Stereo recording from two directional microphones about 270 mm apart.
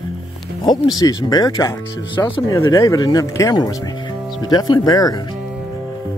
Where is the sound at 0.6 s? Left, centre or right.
Centre.